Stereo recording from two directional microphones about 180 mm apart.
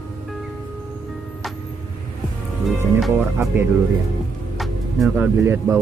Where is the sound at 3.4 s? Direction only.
10° right (ahead or behind).